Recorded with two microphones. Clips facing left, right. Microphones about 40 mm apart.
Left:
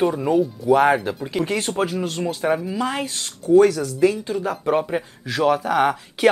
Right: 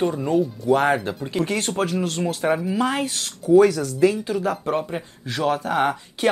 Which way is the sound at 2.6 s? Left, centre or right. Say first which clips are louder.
Right 2 dB; centre.